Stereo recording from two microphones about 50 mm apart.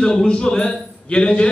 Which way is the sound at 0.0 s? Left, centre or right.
Centre.